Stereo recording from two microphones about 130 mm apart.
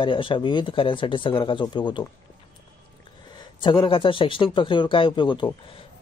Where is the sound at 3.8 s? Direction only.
40° left (ahead or behind).